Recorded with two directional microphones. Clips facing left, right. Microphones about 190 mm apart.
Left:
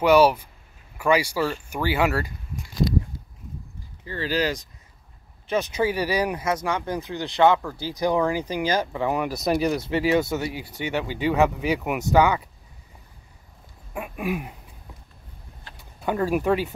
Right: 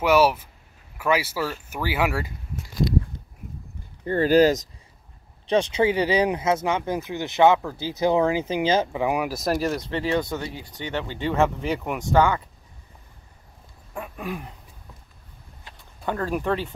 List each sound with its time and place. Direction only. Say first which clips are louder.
0.0 s speech: left 2 dB; 5° right (ahead or behind)
4.0 s speech: right 8 dB; 50° right (ahead or behind)
5.5 s speech: right 3 dB; 30° right (ahead or behind)
9.0 s speech: even; 10° right (ahead or behind)
13.9 s speech: left 4 dB; 10° left (ahead or behind)
16.0 s speech: left 3 dB; 10° left (ahead or behind)